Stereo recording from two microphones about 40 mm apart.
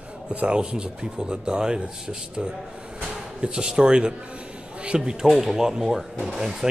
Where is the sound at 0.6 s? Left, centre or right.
Right.